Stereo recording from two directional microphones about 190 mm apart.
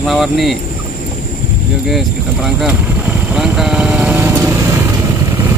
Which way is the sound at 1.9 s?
Centre (ahead or behind).